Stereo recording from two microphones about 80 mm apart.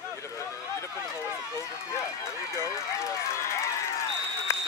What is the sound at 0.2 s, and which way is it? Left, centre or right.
Run, left.